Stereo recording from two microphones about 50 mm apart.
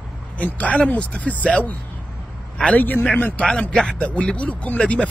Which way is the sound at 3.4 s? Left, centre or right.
Left.